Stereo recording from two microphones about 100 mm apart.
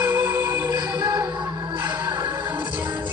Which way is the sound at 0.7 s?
45° right (ahead or behind).